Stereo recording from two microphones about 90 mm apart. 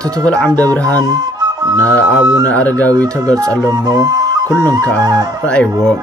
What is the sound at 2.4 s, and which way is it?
Speech, 20° left (ahead or behind).